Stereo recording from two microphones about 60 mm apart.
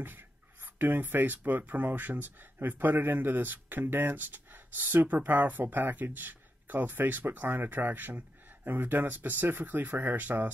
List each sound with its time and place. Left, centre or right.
0.7 s speech: right